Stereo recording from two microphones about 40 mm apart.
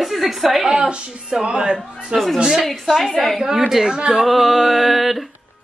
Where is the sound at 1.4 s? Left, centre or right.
Right.